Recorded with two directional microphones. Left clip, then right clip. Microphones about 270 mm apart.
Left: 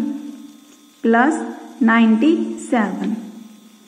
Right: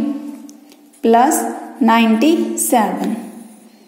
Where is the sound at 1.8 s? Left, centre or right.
Right.